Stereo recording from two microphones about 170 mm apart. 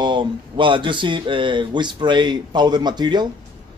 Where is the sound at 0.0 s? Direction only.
25° right (ahead or behind).